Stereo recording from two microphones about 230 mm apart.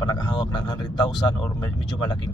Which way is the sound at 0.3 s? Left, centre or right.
Centre.